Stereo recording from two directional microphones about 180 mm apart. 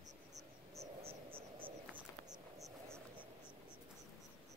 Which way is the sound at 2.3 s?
20° right (ahead or behind).